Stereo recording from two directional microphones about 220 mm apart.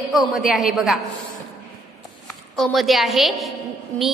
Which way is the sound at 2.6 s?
Centre (ahead or behind).